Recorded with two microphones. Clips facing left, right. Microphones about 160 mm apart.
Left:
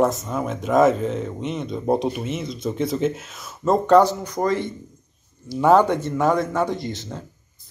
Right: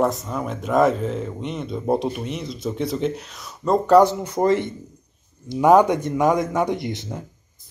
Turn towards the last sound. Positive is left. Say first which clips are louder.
# right 2 dB
turn(degrees=-15)  # may be behind; listen again after turning